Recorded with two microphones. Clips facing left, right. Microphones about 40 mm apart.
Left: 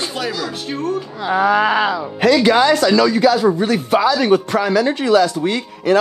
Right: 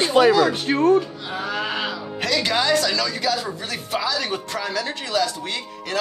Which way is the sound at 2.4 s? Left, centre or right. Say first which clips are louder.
Left 7 dB; centre.